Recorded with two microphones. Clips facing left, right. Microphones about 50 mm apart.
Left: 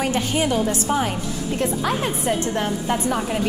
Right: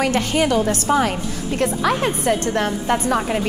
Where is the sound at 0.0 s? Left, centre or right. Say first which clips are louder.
Right 3 dB; right.